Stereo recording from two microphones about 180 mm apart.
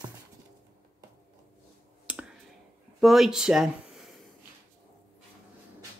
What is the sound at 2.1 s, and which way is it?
Clicking, 5° right (ahead or behind).